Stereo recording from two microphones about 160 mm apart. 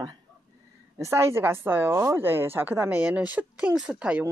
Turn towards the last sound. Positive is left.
turn(degrees=-5)  # may be behind; listen again after turning